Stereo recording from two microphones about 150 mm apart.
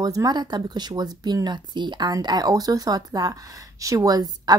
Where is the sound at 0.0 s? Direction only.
25° right (ahead or behind).